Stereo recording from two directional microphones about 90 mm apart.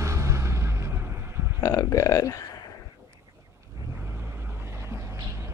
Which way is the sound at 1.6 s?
40° left (ahead or behind).